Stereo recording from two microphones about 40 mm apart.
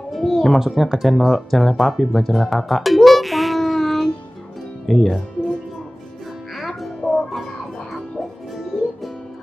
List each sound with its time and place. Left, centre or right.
0.1 s a sound: centre
0.6 s speech: centre
6.8 s music: centre